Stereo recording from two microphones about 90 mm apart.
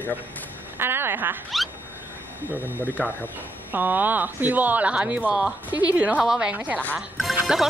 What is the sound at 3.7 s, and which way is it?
A woman's voice, 20° right (ahead or behind).